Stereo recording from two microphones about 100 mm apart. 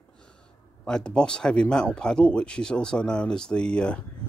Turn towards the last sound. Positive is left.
turn(degrees=10)  # may be behind; listen again after turning